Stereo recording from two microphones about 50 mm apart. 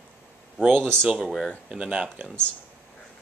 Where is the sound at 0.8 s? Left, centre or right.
Centre.